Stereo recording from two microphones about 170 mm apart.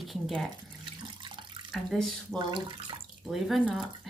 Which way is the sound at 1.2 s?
30° right (ahead or behind).